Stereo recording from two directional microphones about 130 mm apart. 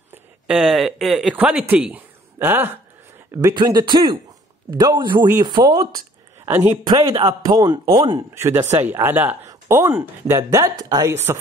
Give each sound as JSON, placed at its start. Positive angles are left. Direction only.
{"t": 0.1, "sound": "speech", "side_deg": -5}
{"t": 3.3, "sound": "a man's voice", "side_deg": -30}
{"t": 6.4, "sound": "speech", "side_deg": -15}
{"t": 6.9, "sound": "a man's voice", "side_deg": -35}
{"t": 8.4, "sound": "speech", "side_deg": -20}